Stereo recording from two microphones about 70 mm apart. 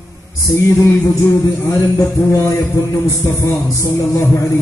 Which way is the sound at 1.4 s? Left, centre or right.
Left.